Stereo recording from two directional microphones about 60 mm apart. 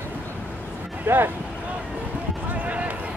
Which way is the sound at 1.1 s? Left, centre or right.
Right.